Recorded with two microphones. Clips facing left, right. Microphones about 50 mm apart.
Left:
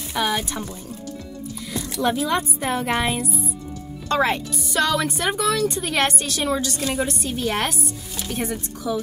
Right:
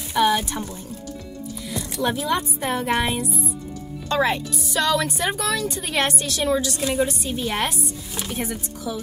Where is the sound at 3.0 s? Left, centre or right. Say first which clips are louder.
Even; left.